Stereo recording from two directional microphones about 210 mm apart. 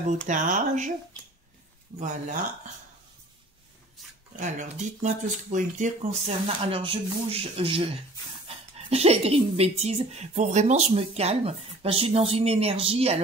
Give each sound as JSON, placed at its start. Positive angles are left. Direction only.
{"t": 0.3, "sound": "speech", "side_deg": -35}
{"t": 1.9, "sound": "speech", "side_deg": -20}
{"t": 4.4, "sound": "speech", "side_deg": -35}